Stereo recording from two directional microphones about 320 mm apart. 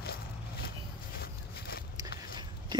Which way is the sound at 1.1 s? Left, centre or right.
Left.